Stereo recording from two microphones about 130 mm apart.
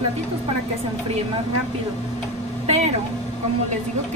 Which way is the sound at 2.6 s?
55° right (ahead or behind).